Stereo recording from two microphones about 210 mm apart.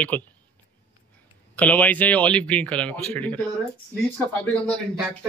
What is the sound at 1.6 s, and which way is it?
Speech, 5° left (ahead or behind).